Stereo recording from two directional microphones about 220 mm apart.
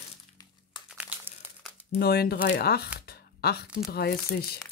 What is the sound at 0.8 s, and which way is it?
Crumpling, 5° right (ahead or behind).